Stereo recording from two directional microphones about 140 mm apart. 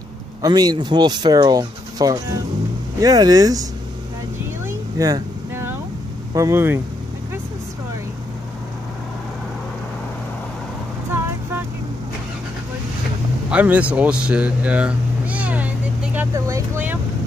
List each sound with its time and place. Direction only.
0.4 s speech: 30° right (ahead or behind)
4.6 s vehicle: 25° right (ahead or behind)
6.3 s speech: 20° right (ahead or behind)
13.5 s a sound: 10° right (ahead or behind)
16.3 s vehicle: 25° right (ahead or behind)